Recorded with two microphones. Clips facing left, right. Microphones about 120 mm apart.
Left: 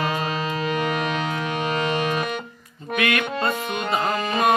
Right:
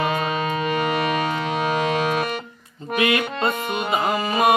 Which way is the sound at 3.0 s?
25° right (ahead or behind).